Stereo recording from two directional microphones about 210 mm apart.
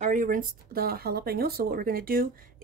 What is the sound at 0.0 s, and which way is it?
Speech, 40° right (ahead or behind).